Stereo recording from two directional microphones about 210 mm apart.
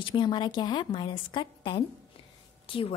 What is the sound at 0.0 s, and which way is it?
A woman's voice, 25° left (ahead or behind).